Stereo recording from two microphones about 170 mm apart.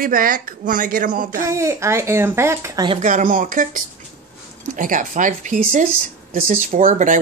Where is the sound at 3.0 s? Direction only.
50° right (ahead or behind).